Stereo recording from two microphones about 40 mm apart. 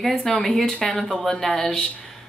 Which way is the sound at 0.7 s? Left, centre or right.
Left.